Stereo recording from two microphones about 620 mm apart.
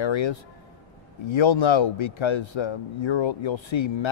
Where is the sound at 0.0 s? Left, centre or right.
Left.